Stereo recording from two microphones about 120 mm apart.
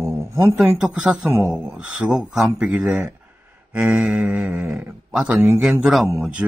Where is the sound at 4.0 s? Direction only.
Centre (ahead or behind).